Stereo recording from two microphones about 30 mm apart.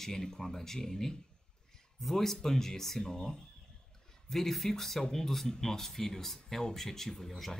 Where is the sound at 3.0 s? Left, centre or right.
Left.